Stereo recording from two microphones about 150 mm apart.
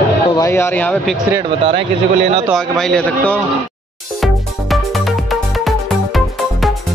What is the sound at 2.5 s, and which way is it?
Speech, 5° left (ahead or behind).